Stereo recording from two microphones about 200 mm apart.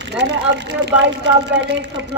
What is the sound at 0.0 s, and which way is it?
Speech, 60° right (ahead or behind).